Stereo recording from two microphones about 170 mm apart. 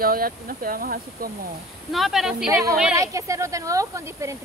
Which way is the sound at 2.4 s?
20° right (ahead or behind).